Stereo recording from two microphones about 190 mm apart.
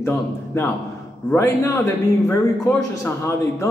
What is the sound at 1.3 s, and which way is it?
Speech, 15° left (ahead or behind).